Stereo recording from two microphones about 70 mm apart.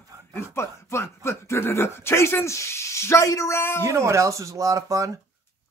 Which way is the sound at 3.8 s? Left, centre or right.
Right.